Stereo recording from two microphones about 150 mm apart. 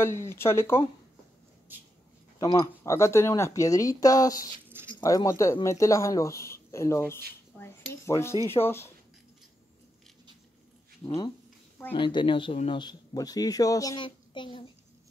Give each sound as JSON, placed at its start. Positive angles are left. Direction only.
{"t": 0.0, "sound": "speech", "side_deg": 15}
{"t": 2.4, "sound": "speech", "side_deg": 25}
{"t": 4.6, "sound": "a sound", "side_deg": -15}
{"t": 5.0, "sound": "speech", "side_deg": 25}
{"t": 7.5, "sound": "a sound", "side_deg": 15}
{"t": 8.5, "sound": "speech", "side_deg": 15}
{"t": 11.1, "sound": "speech", "side_deg": 35}